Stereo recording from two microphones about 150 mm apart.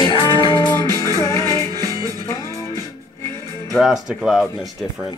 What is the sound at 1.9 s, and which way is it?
Music, 25° right (ahead or behind).